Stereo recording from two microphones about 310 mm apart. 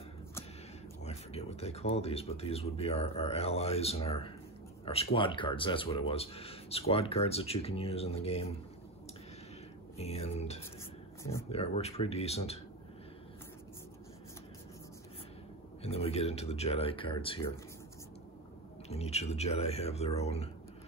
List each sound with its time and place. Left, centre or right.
1.0 s speech: centre
9.9 s speech: centre
15.8 s speech: centre
18.9 s speech: centre